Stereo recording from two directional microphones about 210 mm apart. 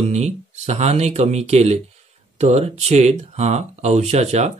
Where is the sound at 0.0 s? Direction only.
30° right (ahead or behind).